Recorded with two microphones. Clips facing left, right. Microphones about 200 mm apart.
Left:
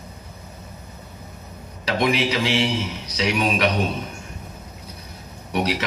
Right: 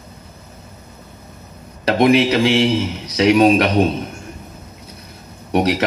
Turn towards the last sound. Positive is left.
turn(degrees=-55)  # may be behind; listen again after turning